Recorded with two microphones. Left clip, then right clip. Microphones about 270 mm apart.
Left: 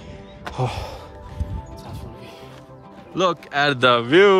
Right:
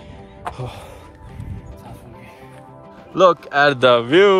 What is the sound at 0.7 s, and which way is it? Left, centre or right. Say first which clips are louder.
Speech: left 5 dB; left.